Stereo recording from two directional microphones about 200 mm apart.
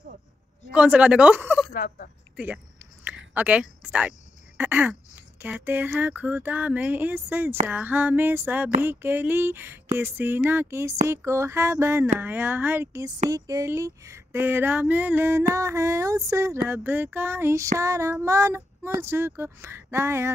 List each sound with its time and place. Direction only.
0.7 s speech: 5° right (ahead or behind)
1.7 s speech: 45° left (ahead or behind)
2.3 s a sound: 5° right (ahead or behind)
4.6 s speech: 10° right (ahead or behind)